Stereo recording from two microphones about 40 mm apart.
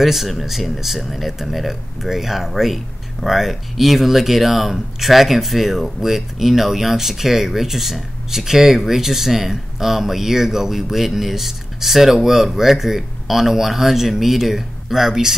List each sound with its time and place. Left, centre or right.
0.0 s speech: centre